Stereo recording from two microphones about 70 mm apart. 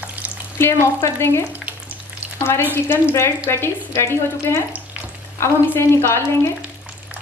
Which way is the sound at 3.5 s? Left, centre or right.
Left.